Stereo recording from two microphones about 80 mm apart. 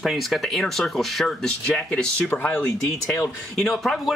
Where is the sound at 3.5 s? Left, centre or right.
Centre.